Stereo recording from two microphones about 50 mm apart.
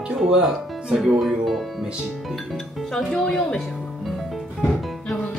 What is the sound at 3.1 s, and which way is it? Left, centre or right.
Speech, centre.